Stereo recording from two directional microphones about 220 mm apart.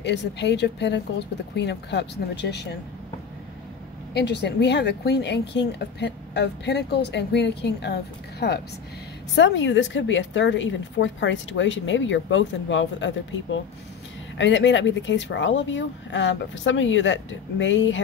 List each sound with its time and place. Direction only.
0.0 s a woman's voice: 50° left (ahead or behind)
4.1 s a woman's voice: 50° left (ahead or behind)